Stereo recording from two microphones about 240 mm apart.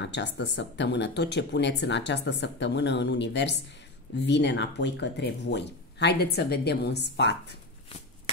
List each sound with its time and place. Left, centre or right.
0.0 s speech: left